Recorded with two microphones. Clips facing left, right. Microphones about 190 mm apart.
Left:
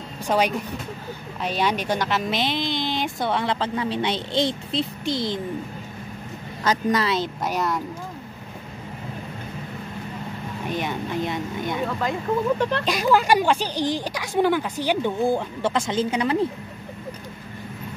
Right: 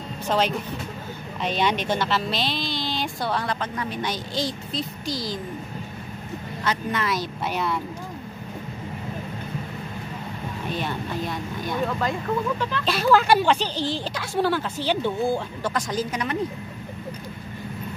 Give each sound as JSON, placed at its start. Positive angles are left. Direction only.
{"t": 0.3, "sound": "speech", "side_deg": 10}
{"t": 6.6, "sound": "speech", "side_deg": 40}
{"t": 10.7, "sound": "speech", "side_deg": 15}
{"t": 12.5, "sound": "speech", "side_deg": 65}
{"t": 12.8, "sound": "speech", "side_deg": 15}